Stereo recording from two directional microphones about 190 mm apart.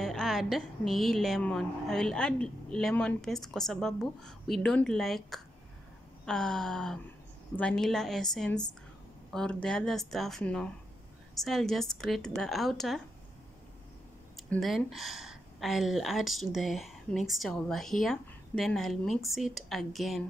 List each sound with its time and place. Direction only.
0.0 s speech: centre (ahead or behind)
14.5 s speech: centre (ahead or behind)